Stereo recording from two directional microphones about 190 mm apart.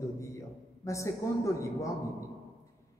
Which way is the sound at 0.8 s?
15° left (ahead or behind).